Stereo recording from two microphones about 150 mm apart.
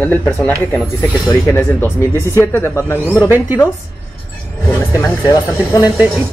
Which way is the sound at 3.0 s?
10° right (ahead or behind).